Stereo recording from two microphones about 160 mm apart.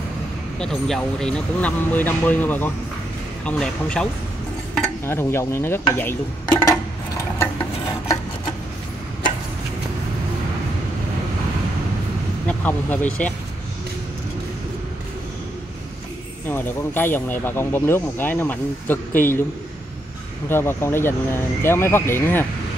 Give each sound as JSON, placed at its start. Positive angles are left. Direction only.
{"t": 0.6, "sound": "speech", "side_deg": 0}
{"t": 5.0, "sound": "speech", "side_deg": 15}
{"t": 6.6, "sound": "a sound", "side_deg": 20}
{"t": 12.4, "sound": "speech", "side_deg": 10}
{"t": 16.4, "sound": "speech", "side_deg": 15}
{"t": 20.4, "sound": "speech", "side_deg": 15}